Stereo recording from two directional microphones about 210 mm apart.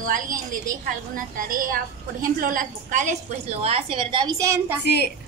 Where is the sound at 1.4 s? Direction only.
40° right (ahead or behind); by 4.8 s 15° right (ahead or behind).